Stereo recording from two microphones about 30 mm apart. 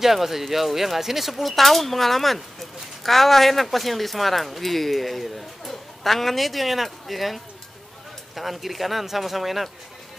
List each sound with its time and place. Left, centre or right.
0.0 s speech: centre